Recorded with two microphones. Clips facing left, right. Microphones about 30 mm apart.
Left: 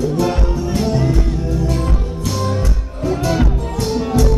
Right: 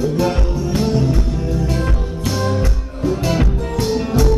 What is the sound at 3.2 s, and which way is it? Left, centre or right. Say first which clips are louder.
Music: left 1 dB; centre.